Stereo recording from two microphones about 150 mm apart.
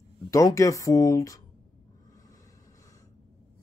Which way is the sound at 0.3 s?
20° left (ahead or behind).